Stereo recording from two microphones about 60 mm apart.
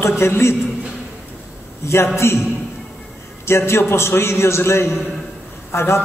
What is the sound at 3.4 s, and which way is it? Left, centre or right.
A man's voice, left.